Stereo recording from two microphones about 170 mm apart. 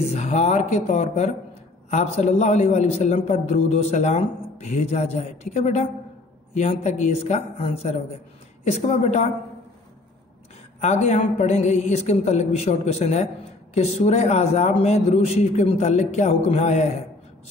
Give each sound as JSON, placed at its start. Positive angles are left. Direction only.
{"t": 0.1, "sound": "speech", "side_deg": 40}
{"t": 10.8, "sound": "speech", "side_deg": 40}